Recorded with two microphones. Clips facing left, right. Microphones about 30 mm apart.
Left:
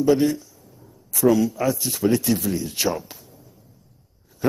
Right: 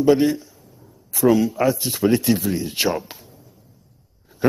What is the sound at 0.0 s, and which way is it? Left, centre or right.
A man's voice, right.